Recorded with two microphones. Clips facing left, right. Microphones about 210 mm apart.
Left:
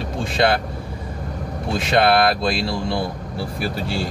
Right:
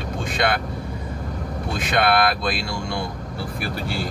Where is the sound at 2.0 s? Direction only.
30° left (ahead or behind).